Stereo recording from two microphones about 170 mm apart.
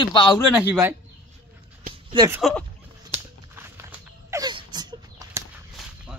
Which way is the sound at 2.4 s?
Centre (ahead or behind).